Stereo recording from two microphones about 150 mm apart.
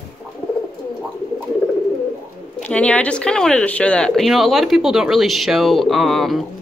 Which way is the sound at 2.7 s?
10° left (ahead or behind).